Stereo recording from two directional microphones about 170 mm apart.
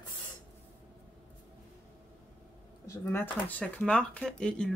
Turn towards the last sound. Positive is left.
turn(degrees=5)  # may be behind; listen again after turning